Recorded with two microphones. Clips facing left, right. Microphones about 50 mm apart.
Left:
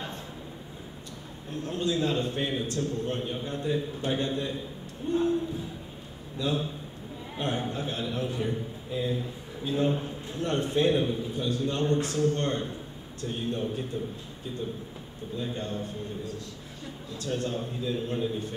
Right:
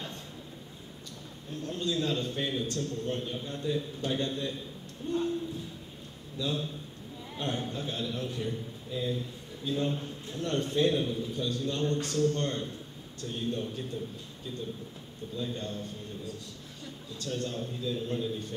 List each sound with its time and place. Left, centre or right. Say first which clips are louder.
1.6 s a man's voice: left 4 dB; centre
6.3 s a man's voice: left 4 dB; centre
15.3 s a man's voice: left 3 dB; left
17.2 s a man's voice: left 3 dB; centre